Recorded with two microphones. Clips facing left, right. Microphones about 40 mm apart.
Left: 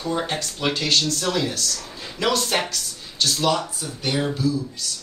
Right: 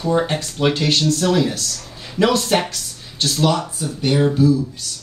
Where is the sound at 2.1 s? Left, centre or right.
Right.